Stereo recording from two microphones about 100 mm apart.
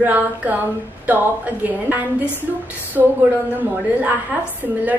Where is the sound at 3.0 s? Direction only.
30° right (ahead or behind).